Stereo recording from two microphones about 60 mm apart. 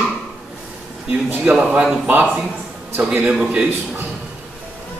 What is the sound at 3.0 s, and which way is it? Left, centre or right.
Speech, centre.